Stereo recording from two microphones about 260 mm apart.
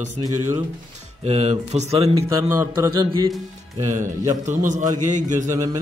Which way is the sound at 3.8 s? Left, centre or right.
Right.